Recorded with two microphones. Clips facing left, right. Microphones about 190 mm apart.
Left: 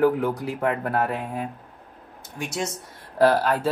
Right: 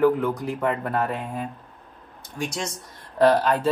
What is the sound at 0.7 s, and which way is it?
Speech, 55° left (ahead or behind).